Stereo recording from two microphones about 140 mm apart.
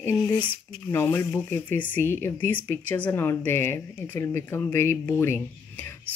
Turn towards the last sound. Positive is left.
turn(degrees=15)  # may be behind; listen again after turning